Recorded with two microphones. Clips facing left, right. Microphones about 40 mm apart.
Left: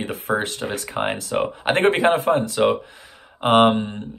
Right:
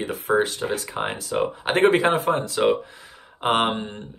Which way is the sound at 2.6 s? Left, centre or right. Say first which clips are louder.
Left 1 dB; centre.